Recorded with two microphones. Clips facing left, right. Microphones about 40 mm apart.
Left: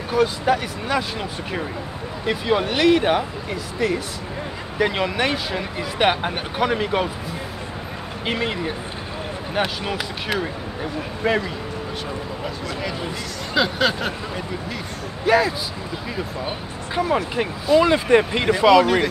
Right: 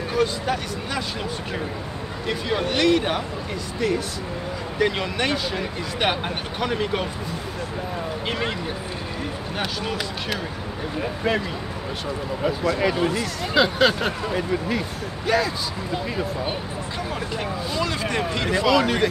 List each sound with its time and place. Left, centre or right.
0.1 s speech: centre
2.2 s speech: centre
8.3 s speech: centre
9.6 s speech: centre
12.7 s speech: centre
13.1 s speech: centre
15.2 s speech: centre
16.9 s speech: left
18.7 s speech: centre